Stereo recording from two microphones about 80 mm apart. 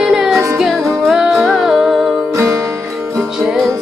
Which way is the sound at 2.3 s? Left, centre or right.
Right.